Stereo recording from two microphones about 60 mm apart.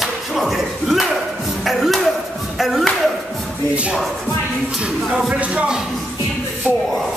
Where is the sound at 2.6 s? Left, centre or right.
Centre.